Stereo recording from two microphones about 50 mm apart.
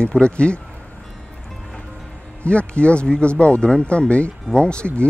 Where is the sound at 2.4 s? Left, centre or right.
Left.